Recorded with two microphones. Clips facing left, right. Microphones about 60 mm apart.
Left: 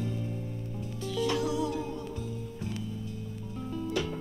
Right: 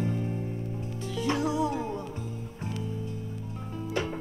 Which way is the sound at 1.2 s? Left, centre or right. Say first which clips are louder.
Right 2 dB; right.